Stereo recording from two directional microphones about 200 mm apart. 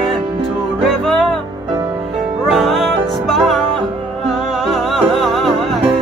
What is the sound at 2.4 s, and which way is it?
Music, centre (ahead or behind).